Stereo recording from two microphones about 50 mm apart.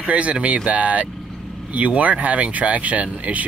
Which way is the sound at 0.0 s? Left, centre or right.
Right.